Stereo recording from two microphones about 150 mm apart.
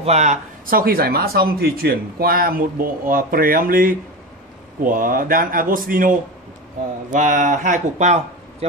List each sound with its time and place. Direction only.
0.0 s speech: 50° right (ahead or behind)
0.7 s speech: 80° right; by 8.6 s 50° right (ahead or behind)